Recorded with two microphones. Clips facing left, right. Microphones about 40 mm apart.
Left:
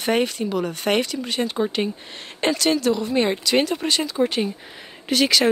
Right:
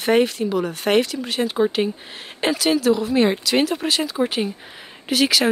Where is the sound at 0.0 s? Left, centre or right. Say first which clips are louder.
Right 3 dB; centre.